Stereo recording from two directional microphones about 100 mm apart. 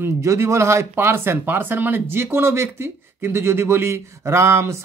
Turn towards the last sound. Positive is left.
turn(degrees=-25)  # may be behind; listen again after turning